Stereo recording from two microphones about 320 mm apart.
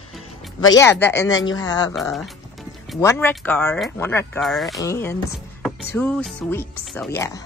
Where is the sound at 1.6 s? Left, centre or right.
Centre.